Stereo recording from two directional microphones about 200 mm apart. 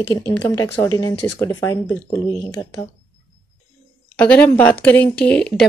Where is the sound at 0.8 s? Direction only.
15° left (ahead or behind).